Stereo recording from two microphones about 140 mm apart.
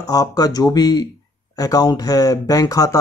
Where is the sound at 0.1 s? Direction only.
25° left (ahead or behind).